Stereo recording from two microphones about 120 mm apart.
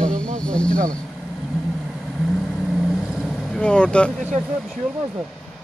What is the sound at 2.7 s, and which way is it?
Vehicle, 5° right (ahead or behind).